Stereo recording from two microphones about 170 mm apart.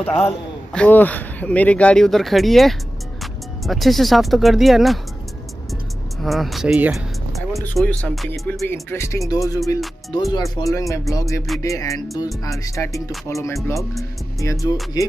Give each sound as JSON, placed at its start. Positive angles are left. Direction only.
{"t": 0.0, "sound": "speech", "side_deg": 10}
{"t": 6.2, "sound": "speech", "side_deg": 0}
{"t": 8.3, "sound": "speech", "side_deg": 10}
{"t": 8.9, "sound": "speech", "side_deg": 15}
{"t": 9.3, "sound": "music", "side_deg": 20}
{"t": 13.3, "sound": "speech", "side_deg": 15}
{"t": 14.4, "sound": "music", "side_deg": 20}